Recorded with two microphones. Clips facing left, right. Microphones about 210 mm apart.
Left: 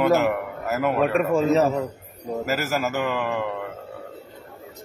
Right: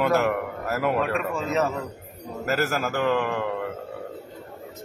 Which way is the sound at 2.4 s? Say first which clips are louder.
Right 1 dB; centre (ahead or behind).